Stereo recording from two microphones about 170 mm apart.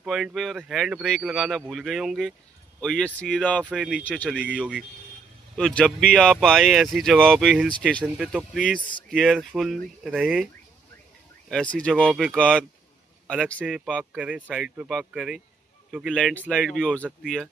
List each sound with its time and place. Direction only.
0.0 s speech: centre (ahead or behind)
4.6 s speech: 5° right (ahead or behind)
5.6 s speech: 5° left (ahead or behind)
8.2 s speech: 5° right (ahead or behind)
8.5 s speech: 5° left (ahead or behind)
11.4 s speech: 5° left (ahead or behind)
14.1 s speech: 5° right (ahead or behind)